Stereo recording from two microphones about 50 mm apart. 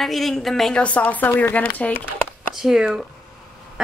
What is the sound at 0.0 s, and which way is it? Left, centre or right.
Speech, centre.